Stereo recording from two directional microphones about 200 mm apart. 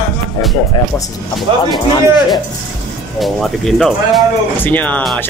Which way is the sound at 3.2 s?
Centre (ahead or behind).